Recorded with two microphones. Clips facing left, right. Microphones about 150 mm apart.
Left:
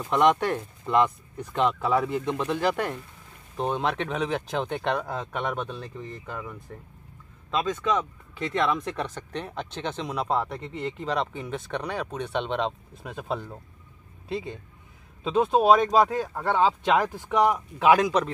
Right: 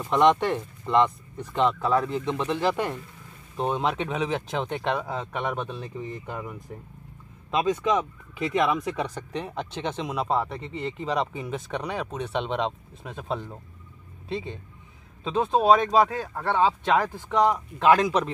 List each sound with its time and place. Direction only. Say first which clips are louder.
0.1 s speech: right 1 dB; 5° left (ahead or behind)
6.0 s speech: right 2 dB; 15° right (ahead or behind); by 18.1 s 5° left (ahead or behind)